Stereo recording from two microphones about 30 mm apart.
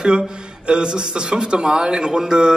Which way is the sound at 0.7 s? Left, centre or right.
Right.